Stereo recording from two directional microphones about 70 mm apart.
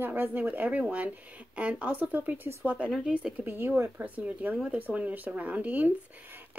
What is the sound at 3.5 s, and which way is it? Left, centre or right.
Speech, right.